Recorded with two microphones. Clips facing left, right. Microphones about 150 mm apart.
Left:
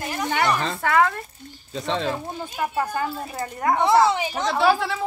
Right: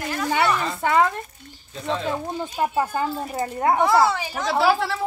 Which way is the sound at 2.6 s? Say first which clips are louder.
Right 2 dB; 20° right (ahead or behind).